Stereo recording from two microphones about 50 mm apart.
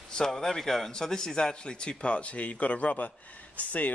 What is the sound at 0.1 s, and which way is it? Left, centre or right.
A man's voice, centre.